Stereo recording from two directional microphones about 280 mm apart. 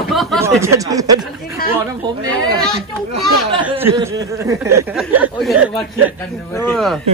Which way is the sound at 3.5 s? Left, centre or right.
Centre.